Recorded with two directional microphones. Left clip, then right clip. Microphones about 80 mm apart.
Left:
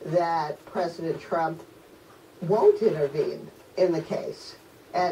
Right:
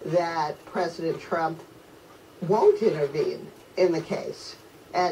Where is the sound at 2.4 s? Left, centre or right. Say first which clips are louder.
Even; centre.